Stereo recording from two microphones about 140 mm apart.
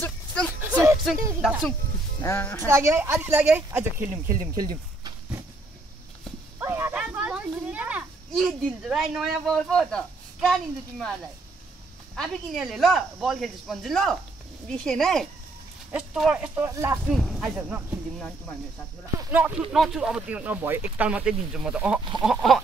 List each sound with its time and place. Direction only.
0.0 s a sound: 5° left (ahead or behind)
0.6 s music: 10° right (ahead or behind)
1.4 s speech: 5° right (ahead or behind)
2.2 s speech: 15° left (ahead or behind)
2.6 s speech: 20° right (ahead or behind)
4.6 s speech: 30° right (ahead or behind)
6.6 s a sound: 15° right (ahead or behind)
8.4 s speech: centre (ahead or behind)
12.2 s speech: centre (ahead or behind)
16.7 s speech: 20° right (ahead or behind)
17.0 s speech: centre (ahead or behind)
19.3 s speech: 10° right (ahead or behind)